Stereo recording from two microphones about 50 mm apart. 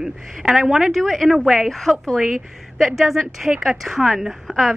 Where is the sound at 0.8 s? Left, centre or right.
Centre.